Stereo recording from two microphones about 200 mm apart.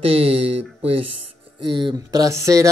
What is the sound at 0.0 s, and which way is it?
Speech, 30° right (ahead or behind).